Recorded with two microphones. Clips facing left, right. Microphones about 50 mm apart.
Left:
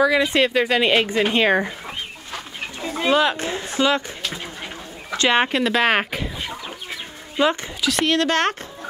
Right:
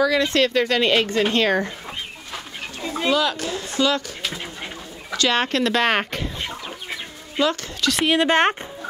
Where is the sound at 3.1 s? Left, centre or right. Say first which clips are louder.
Left 4 dB; left.